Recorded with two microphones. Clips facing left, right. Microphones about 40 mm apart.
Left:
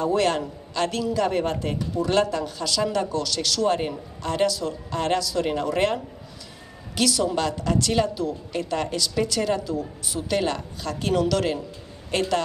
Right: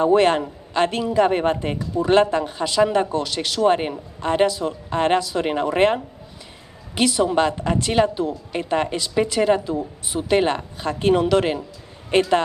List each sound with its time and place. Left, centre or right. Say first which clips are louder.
0.0 s a woman's voice: right 6 dB; right